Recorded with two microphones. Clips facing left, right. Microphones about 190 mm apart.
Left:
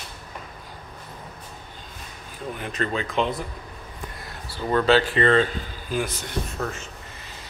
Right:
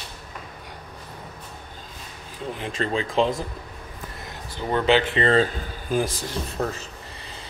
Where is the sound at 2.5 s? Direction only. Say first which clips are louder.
Right 1 dB; 30° right (ahead or behind).